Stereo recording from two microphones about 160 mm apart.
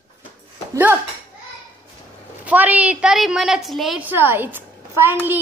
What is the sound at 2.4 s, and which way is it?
A woman's voice, 10° right (ahead or behind).